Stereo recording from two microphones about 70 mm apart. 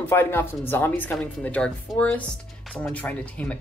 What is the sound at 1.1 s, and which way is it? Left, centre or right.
Speech, centre.